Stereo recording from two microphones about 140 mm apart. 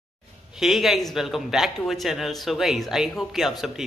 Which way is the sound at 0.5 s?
Centre (ahead or behind).